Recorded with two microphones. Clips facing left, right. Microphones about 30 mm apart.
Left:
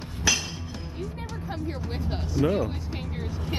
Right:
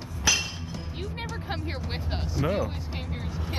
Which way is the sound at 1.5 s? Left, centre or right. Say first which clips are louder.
Left 3 dB; right.